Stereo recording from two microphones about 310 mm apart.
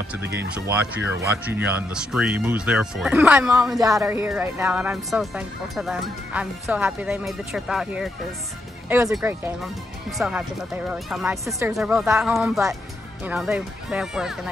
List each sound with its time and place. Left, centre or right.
0.2 s speech: right
0.6 s speech: centre